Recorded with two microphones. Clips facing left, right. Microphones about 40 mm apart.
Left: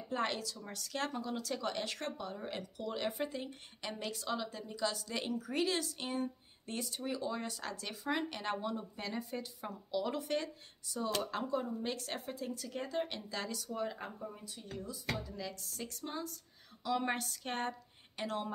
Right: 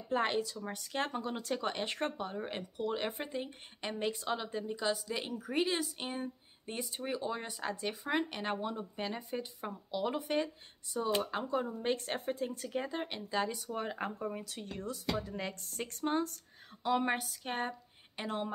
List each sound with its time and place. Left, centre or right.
0.1 s speech: right
5.0 s speech: centre; by 12.7 s right
12.7 s speech: centre
13.7 s speech: right
14.2 s speech: right
15.2 s speech: right
17.0 s a woman's voice: centre
18.2 s speech: right